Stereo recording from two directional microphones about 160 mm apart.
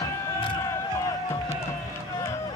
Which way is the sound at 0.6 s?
15° left (ahead or behind).